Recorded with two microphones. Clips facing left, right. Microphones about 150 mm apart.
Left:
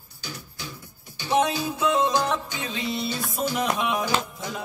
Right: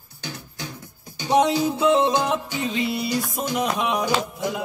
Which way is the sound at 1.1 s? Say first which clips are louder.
Right 4 dB; 35° right (ahead or behind).